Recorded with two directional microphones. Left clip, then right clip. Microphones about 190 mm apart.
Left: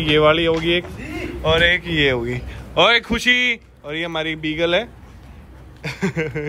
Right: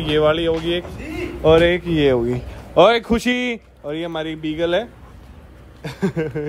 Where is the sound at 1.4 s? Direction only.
35° right (ahead or behind).